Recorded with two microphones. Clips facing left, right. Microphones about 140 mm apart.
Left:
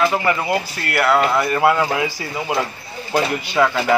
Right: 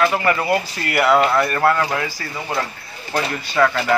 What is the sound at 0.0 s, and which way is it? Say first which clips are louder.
Speech: even; 15° left (ahead or behind).